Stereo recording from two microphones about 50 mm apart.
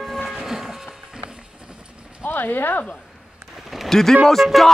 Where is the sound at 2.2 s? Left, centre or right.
Left.